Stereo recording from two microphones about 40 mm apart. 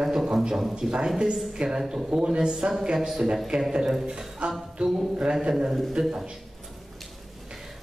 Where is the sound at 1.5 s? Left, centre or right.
Right.